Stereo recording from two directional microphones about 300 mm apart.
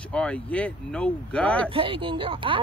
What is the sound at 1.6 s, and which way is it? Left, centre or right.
Speech, centre.